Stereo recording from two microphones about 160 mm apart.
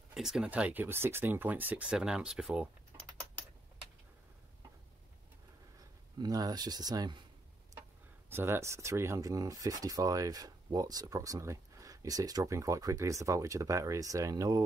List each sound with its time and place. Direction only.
0.1 s speech: 5° right (ahead or behind)
6.1 s speech: 25° right (ahead or behind)
8.3 s speech: 15° right (ahead or behind)